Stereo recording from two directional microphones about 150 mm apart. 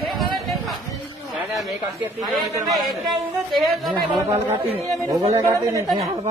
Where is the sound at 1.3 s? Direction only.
Centre (ahead or behind).